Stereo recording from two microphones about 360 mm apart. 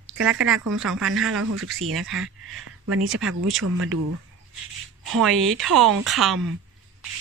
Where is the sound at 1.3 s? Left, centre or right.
Right.